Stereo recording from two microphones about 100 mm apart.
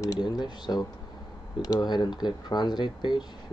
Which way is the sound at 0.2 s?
45° left (ahead or behind).